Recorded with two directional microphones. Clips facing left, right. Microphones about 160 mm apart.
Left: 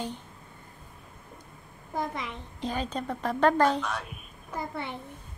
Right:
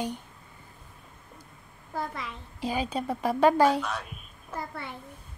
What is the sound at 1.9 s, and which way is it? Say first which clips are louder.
Speech: left 2 dB; 20° left (ahead or behind).